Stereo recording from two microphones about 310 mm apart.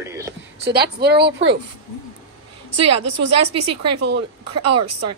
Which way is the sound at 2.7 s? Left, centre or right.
Right.